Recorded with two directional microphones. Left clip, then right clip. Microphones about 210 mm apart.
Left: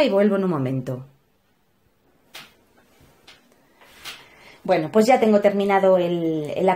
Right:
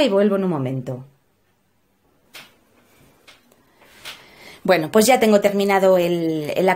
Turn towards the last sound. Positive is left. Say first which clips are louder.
# right 2 dB
turn(degrees=-40)  # may be behind; listen again after turning